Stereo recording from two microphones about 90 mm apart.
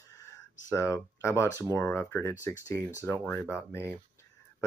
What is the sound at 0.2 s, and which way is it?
Speech, 30° left (ahead or behind).